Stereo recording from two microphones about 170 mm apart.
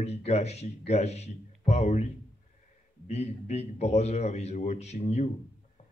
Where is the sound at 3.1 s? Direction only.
40° left (ahead or behind).